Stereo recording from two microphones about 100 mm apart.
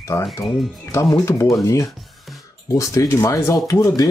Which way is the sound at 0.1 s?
35° left (ahead or behind).